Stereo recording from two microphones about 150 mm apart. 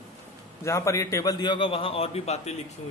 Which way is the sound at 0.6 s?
20° left (ahead or behind).